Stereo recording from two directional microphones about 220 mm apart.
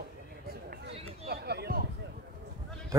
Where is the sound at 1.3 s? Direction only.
45° right (ahead or behind).